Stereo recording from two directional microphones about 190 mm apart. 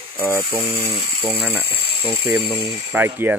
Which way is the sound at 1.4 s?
5° right (ahead or behind).